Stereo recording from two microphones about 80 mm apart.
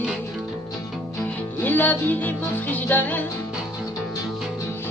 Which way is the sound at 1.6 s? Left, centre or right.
Left.